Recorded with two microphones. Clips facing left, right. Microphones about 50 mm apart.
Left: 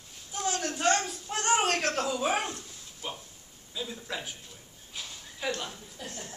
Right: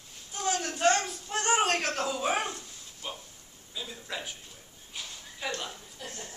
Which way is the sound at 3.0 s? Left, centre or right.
Centre.